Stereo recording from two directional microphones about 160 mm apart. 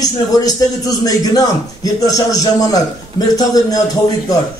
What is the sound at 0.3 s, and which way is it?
Speech, 20° left (ahead or behind).